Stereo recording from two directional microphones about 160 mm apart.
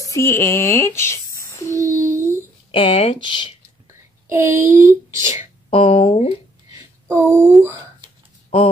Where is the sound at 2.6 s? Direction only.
35° left (ahead or behind).